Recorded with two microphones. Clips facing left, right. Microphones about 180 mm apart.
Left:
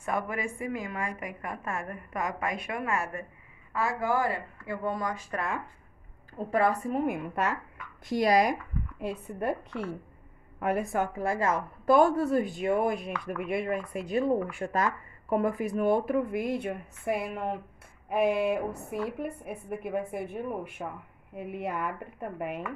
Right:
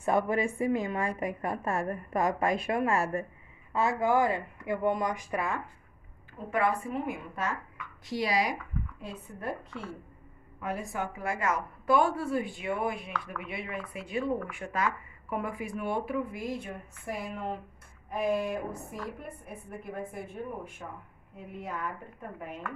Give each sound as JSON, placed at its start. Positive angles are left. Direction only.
{"t": 0.0, "sound": "a woman's voice", "side_deg": -30}
{"t": 6.3, "sound": "a woman's voice", "side_deg": 40}
{"t": 7.1, "sound": "a woman's voice", "side_deg": 60}
{"t": 7.7, "sound": "speech", "side_deg": 50}
{"t": 9.0, "sound": "a woman's voice", "side_deg": 60}
{"t": 11.1, "sound": "a woman's voice", "side_deg": 30}